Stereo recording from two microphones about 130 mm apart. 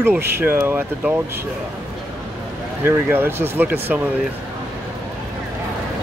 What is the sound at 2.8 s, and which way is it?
Speech, 15° right (ahead or behind).